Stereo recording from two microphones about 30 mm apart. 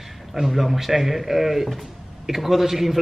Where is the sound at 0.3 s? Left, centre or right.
Centre.